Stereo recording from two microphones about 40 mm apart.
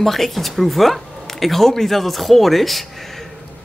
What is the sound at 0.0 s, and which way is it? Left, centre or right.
Speech, centre.